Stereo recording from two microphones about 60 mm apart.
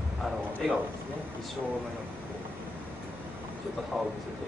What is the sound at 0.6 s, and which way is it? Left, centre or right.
Speech, centre.